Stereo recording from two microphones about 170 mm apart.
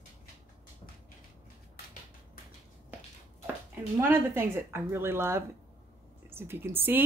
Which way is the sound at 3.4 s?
10° right (ahead or behind).